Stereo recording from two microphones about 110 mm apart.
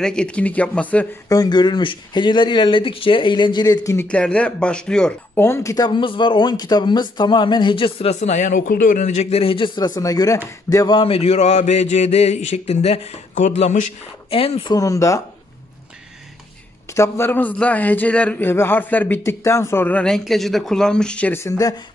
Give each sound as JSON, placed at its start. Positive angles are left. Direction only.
{"t": 0.0, "sound": "a man's voice", "side_deg": 10}
{"t": 1.3, "sound": "speech", "side_deg": 40}
{"t": 4.1, "sound": "a man's voice", "side_deg": 10}
{"t": 5.4, "sound": "speech", "side_deg": 25}
{"t": 8.1, "sound": "a man's voice", "side_deg": 90}
{"t": 9.8, "sound": "speech", "side_deg": 35}
{"t": 11.0, "sound": "speech", "side_deg": 60}
{"t": 14.3, "sound": "a man's voice", "side_deg": 60}
{"t": 14.7, "sound": "speech", "side_deg": 30}
{"t": 16.9, "sound": "a man's voice", "side_deg": 25}
{"t": 20.0, "sound": "speech", "side_deg": 5}
{"t": 21.3, "sound": "speech", "side_deg": 25}